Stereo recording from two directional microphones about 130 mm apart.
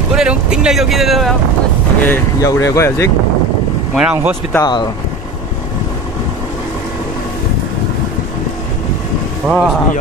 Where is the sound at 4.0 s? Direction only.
10° right (ahead or behind).